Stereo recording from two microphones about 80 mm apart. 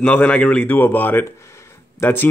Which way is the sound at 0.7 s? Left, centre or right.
Left.